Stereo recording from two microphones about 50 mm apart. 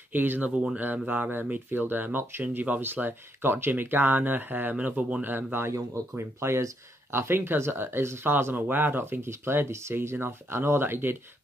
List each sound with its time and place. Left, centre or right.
0.1 s speech: right
2.4 s speech: right
5.2 s speech: right
5.7 s speech: right
8.5 s speech: right
10.2 s speech: right